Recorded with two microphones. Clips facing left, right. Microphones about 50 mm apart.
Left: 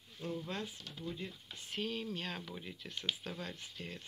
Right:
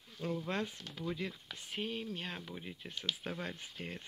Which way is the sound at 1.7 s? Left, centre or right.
Centre.